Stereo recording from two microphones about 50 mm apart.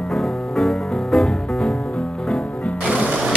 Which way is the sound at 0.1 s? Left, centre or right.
Left.